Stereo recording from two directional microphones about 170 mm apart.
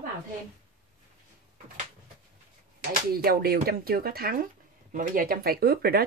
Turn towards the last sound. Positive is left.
turn(degrees=-65)  # may be behind; listen again after turning